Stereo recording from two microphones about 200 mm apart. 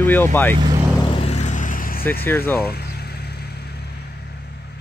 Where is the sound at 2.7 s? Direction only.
55° left (ahead or behind).